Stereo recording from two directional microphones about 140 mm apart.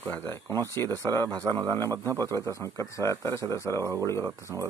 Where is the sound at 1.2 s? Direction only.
30° right (ahead or behind).